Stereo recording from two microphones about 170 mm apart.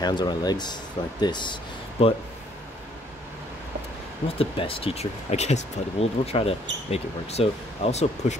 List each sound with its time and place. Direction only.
0.0 s speech: 25° left (ahead or behind)
4.4 s speech: 35° left (ahead or behind)